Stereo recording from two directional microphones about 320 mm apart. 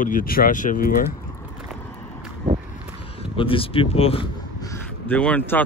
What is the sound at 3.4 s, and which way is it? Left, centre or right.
Speech, centre.